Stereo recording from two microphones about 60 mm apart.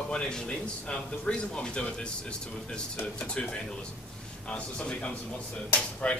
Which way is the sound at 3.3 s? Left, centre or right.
Centre.